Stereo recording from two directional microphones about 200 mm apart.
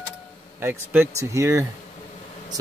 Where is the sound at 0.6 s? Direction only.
10° right (ahead or behind).